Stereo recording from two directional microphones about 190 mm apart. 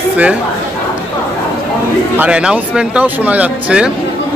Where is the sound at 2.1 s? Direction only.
5° right (ahead or behind).